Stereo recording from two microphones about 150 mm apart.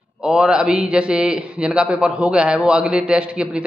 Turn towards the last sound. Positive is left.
turn(degrees=-5)  # may be behind; listen again after turning